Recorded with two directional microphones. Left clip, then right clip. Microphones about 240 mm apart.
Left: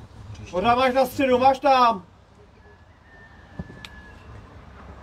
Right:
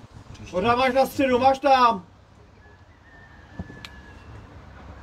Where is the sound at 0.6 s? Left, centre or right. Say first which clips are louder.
Left 1 dB; left.